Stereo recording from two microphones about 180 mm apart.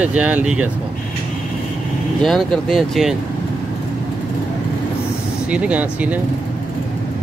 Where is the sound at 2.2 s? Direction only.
Centre (ahead or behind).